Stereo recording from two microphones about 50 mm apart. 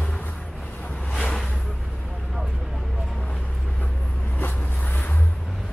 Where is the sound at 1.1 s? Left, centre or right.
Centre.